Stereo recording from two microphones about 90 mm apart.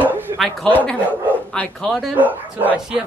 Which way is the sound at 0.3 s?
55° right (ahead or behind).